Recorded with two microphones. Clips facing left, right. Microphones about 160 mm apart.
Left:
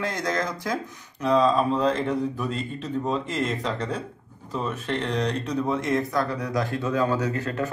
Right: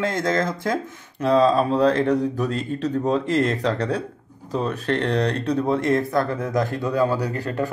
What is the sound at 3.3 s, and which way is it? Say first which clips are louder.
Speech: right 6 dB; 70° right (ahead or behind).